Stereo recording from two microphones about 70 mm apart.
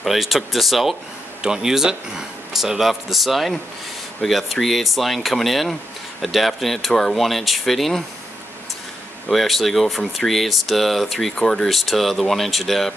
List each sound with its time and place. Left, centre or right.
0.0 s speech: centre
9.3 s speech: centre